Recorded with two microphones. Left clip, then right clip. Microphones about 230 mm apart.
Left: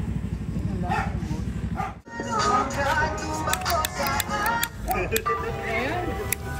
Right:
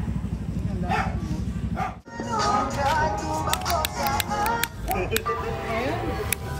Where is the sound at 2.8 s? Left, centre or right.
Right.